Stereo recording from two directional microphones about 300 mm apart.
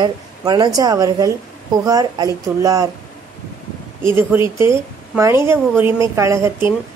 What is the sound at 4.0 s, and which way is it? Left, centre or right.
Speech, centre.